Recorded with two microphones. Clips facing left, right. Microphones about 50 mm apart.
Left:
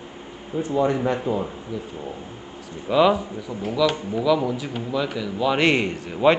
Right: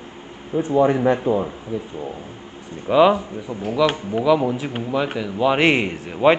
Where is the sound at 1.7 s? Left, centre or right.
Right.